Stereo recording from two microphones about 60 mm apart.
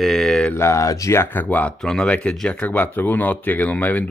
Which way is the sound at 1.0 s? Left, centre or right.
Left.